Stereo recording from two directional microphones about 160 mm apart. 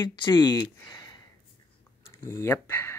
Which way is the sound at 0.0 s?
25° left (ahead or behind).